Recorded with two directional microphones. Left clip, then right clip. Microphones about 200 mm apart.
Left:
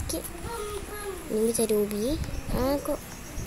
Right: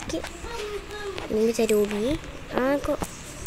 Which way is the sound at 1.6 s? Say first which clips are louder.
Right 3 dB; centre (ahead or behind).